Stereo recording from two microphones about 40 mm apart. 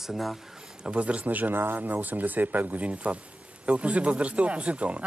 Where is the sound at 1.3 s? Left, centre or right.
Right.